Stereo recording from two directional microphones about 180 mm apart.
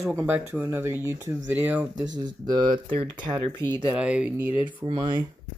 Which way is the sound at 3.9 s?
5° right (ahead or behind).